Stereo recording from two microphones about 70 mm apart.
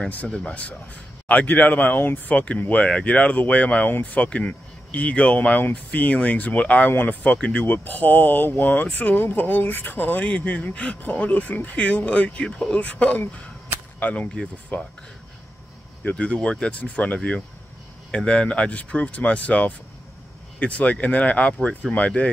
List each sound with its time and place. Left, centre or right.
0.1 s speech: centre
16.1 s speech: centre